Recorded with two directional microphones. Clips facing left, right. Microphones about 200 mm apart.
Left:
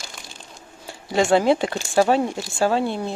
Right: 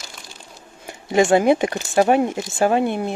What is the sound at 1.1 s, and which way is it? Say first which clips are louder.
Speech: right 2 dB; 15° right (ahead or behind).